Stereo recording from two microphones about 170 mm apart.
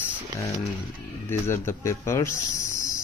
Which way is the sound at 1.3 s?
15° left (ahead or behind).